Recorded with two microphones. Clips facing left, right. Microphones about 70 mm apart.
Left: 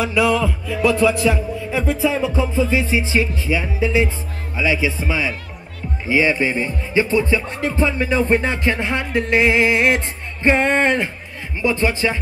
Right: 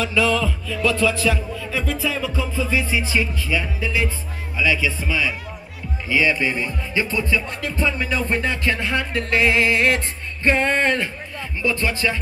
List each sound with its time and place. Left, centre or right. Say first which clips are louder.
0.0 s music: left 3 dB; centre